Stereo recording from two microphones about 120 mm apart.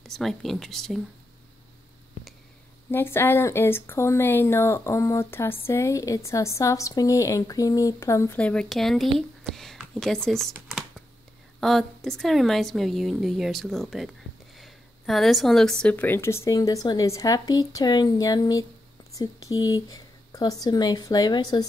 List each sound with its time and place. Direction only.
0.0 s a woman's voice: 5° left (ahead or behind)
2.9 s speech: 20° left (ahead or behind)
8.4 s a woman's voice: 10° left (ahead or behind)
14.6 s a sound: centre (ahead or behind)
15.8 s speech: 15° left (ahead or behind); by 21.6 s 35° left (ahead or behind)